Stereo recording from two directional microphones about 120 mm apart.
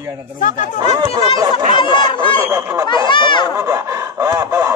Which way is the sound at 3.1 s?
40° left (ahead or behind).